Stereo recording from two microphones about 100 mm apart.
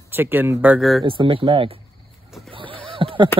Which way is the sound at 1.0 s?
55° right (ahead or behind).